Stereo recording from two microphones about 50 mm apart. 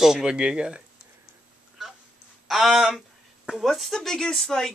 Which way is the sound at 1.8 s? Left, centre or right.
Centre.